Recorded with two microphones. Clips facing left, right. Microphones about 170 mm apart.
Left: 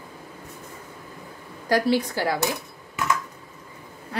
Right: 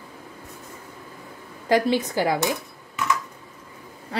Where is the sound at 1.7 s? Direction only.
20° right (ahead or behind).